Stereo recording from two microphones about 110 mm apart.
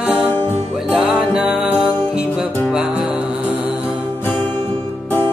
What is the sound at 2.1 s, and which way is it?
Music, 5° right (ahead or behind).